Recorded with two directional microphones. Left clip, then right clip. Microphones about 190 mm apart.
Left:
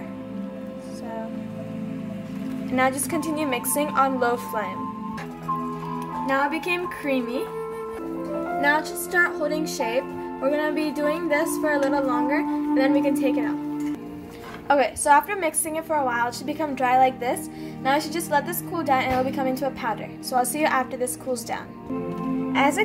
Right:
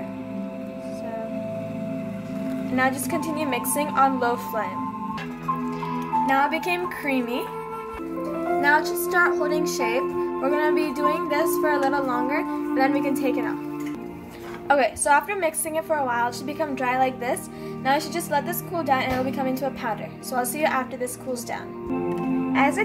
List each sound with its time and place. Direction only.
2.7 s a woman's voice: 10° left (ahead or behind)
6.2 s speech: 5° right (ahead or behind)
8.5 s speech: 10° right (ahead or behind)
14.7 s a woman's voice: 5° left (ahead or behind)